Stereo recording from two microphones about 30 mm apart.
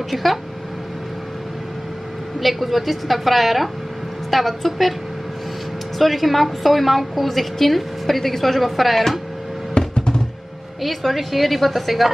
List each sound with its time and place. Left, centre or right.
0.1 s a woman's voice: centre
2.4 s a woman's voice: centre
5.9 s a woman's voice: centre
9.8 s music: left
10.8 s a woman's voice: centre